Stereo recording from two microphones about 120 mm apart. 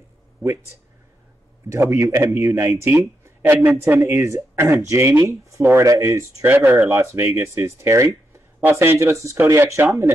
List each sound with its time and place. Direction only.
1.7 s speech: 25° right (ahead or behind)